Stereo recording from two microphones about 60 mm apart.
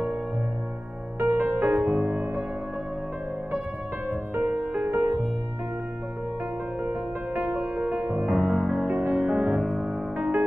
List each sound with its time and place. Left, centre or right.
1.2 s music: right
4.4 s music: centre
4.8 s music: right
6.8 s music: right
8.3 s music: centre
8.8 s music: centre
9.1 s music: centre